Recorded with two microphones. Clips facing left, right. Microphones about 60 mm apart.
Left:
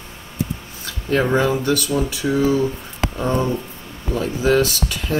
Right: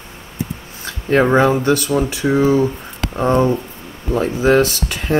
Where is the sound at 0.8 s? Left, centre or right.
Right.